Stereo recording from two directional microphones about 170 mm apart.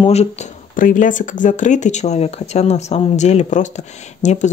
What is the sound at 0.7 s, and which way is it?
Speech, 50° left (ahead or behind).